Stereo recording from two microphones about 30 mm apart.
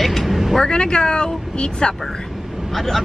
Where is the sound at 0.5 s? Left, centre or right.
Left.